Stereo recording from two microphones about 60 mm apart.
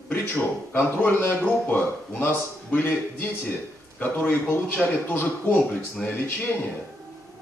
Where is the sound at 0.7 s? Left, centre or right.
Left.